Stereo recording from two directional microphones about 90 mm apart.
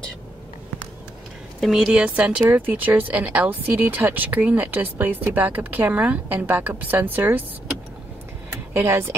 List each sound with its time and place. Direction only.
1.6 s speech: 5° right (ahead or behind); by 7.4 s 25° right (ahead or behind)
8.7 s speech: 25° right (ahead or behind)